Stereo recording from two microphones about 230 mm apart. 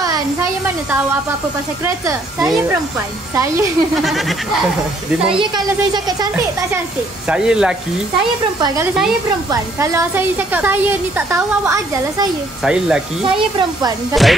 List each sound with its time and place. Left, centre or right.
0.0 s a sound: centre
1.9 s a woman's voice: centre
3.9 s speech: centre
5.3 s speech: centre
7.2 s speech: centre
8.5 s a woman's voice: centre
12.7 s speech: centre
14.2 s speech: centre